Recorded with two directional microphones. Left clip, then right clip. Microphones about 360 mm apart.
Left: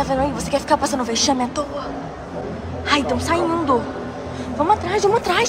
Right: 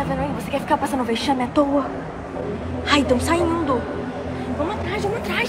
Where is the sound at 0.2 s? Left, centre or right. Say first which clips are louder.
Left 4 dB; centre.